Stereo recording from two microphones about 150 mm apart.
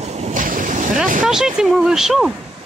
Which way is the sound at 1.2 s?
5° right (ahead or behind).